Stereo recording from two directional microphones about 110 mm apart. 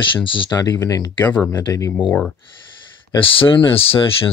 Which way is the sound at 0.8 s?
30° left (ahead or behind).